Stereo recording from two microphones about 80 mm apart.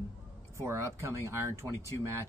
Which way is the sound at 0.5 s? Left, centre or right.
Right.